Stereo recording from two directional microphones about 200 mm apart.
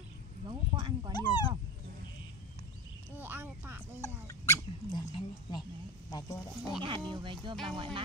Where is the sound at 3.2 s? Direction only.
10° right (ahead or behind).